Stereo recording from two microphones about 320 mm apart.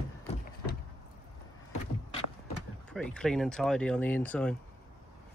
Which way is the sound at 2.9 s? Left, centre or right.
Centre.